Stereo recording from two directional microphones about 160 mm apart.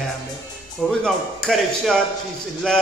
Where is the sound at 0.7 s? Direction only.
5° left (ahead or behind).